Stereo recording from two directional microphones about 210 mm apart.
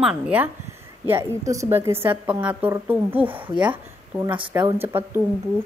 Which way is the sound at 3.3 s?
20° right (ahead or behind).